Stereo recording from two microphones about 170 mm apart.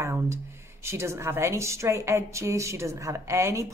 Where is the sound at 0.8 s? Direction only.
15° right (ahead or behind).